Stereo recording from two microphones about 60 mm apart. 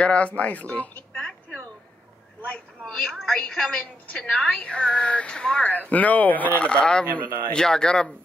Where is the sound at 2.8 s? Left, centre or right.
Centre.